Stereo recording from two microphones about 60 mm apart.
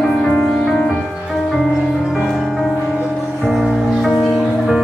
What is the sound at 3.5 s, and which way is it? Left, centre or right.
Music, centre.